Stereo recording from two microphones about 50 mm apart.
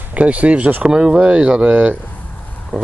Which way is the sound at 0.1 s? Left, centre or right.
Right.